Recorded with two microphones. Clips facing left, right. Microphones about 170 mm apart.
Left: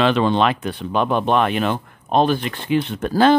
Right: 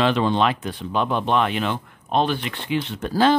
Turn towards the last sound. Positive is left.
turn(degrees=55)  # may be behind; listen again after turning